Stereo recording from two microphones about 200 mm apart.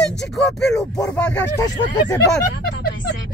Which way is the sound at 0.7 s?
15° left (ahead or behind).